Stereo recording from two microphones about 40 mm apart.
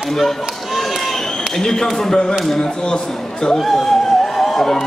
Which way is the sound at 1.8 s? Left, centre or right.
Centre.